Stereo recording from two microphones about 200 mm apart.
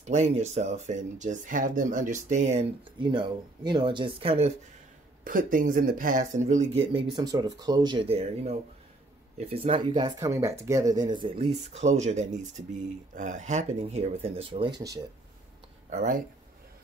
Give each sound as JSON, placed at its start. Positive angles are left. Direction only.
{"t": 0.0, "sound": "speech", "side_deg": -35}
{"t": 3.0, "sound": "speech", "side_deg": -25}
{"t": 5.2, "sound": "speech", "side_deg": -45}
{"t": 6.9, "sound": "speech", "side_deg": -25}
{"t": 15.9, "sound": "speech", "side_deg": -40}